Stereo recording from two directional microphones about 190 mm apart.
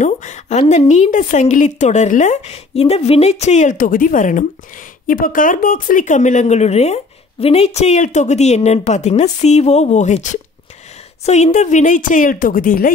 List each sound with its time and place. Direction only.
0.0 s a woman's voice: 40° left (ahead or behind)